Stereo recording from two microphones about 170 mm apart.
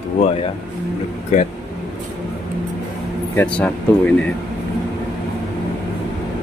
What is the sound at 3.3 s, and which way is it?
Speech, 10° left (ahead or behind).